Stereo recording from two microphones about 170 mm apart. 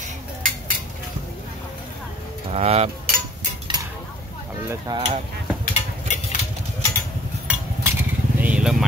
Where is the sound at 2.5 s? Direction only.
40° right (ahead or behind).